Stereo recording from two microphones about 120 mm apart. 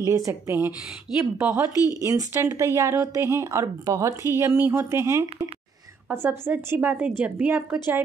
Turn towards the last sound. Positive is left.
turn(degrees=-15)  # may be behind; listen again after turning